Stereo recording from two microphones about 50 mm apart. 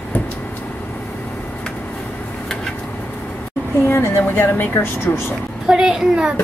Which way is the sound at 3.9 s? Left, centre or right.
Left.